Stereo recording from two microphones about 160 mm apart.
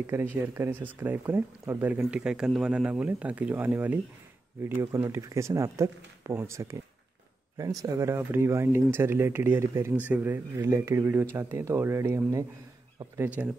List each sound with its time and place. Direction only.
0.0 s speech: 15° right (ahead or behind)